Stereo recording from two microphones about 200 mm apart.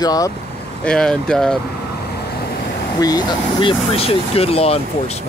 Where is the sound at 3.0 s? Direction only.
20° left (ahead or behind).